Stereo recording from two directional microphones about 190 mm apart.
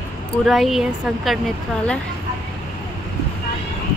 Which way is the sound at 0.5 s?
Centre (ahead or behind).